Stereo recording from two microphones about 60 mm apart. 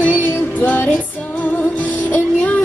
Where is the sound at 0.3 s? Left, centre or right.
Left.